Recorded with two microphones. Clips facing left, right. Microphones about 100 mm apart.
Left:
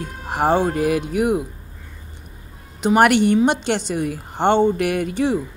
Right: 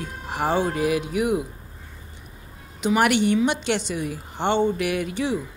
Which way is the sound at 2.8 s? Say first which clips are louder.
Left 5 dB; 50° left (ahead or behind).